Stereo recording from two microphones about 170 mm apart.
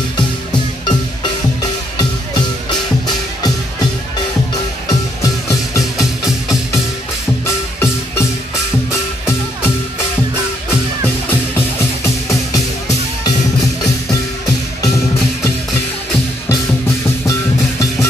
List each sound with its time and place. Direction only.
0.8 s music: 25° left (ahead or behind)
5.2 s music: 20° left (ahead or behind)
7.4 s music: 15° left (ahead or behind)
12.0 s music: 20° left (ahead or behind)